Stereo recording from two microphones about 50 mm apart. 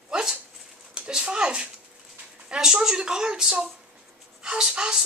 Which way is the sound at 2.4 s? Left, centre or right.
Centre.